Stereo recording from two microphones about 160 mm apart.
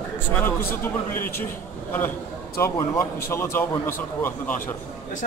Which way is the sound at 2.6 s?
15° left (ahead or behind).